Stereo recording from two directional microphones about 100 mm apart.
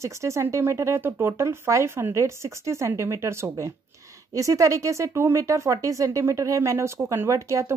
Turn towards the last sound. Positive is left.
turn(degrees=-30)  # may be behind; listen again after turning